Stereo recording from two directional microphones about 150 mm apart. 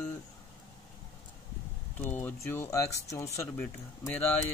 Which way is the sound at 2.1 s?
15° left (ahead or behind).